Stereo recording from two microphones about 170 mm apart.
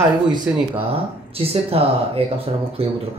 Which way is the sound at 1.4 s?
35° right (ahead or behind).